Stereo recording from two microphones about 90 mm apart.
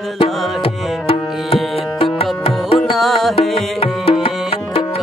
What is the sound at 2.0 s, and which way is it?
Music, 90° left.